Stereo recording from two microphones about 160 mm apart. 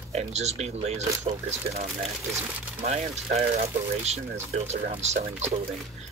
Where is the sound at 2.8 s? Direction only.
45° right (ahead or behind).